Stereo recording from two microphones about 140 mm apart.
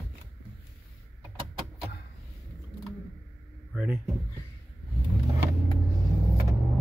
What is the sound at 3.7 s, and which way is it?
Speech, 10° right (ahead or behind).